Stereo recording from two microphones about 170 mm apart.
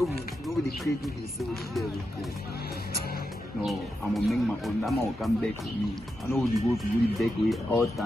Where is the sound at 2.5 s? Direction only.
65° left (ahead or behind).